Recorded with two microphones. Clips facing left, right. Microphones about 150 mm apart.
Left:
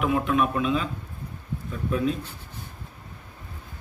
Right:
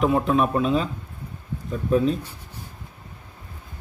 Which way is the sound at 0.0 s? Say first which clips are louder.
Right 3 dB; 35° right (ahead or behind).